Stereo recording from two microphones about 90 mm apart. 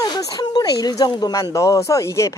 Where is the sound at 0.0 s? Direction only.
45° left (ahead or behind).